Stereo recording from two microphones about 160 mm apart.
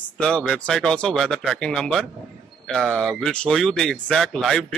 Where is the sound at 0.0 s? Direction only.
5° left (ahead or behind).